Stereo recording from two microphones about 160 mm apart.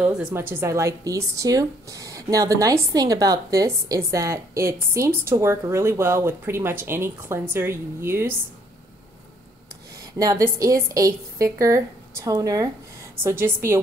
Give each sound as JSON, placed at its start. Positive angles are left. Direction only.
{"t": 0.3, "sound": "a woman's voice", "side_deg": -15}
{"t": 9.9, "sound": "a woman's voice", "side_deg": -20}